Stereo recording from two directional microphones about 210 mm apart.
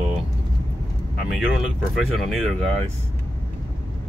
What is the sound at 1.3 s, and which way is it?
Speech, centre (ahead or behind).